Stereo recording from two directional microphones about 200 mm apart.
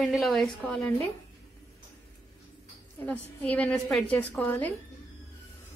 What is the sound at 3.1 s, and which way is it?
A woman's voice, 5° left (ahead or behind).